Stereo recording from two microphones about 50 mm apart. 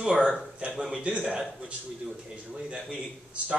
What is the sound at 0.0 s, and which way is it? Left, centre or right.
A man's voice, right.